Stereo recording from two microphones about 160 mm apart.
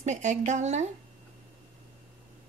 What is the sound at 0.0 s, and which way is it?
Speech, 45° right (ahead or behind).